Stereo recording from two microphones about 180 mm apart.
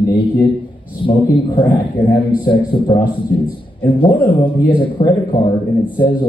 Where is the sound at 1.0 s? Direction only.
25° left (ahead or behind).